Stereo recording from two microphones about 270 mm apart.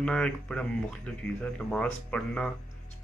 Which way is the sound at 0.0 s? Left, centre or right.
Centre.